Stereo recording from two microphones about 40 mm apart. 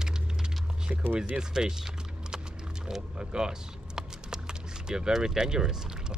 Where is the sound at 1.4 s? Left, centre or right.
Centre.